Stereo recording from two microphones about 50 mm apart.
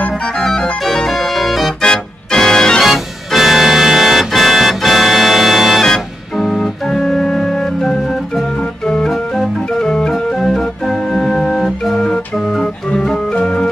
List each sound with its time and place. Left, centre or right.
0.4 s organ: centre
1.8 s organ: centre
2.8 s organ: centre
6.6 s organ: centre